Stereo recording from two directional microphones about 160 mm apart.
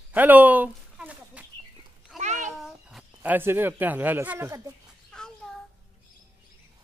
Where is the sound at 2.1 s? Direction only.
50° right (ahead or behind).